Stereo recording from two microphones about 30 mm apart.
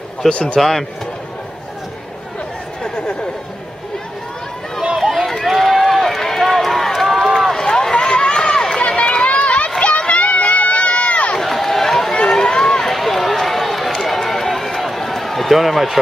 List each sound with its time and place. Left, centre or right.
0.3 s a man's voice: left
0.6 s speech: centre
5.1 s run: centre
7.1 s run: centre
7.5 s run: left
8.8 s run: left
11.3 s run: centre
12.9 s run: centre
15.5 s speech: centre